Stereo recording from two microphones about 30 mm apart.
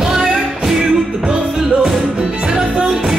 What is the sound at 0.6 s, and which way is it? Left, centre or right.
Music, centre.